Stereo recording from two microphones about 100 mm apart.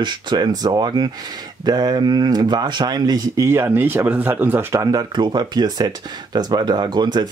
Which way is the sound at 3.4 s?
25° right (ahead or behind).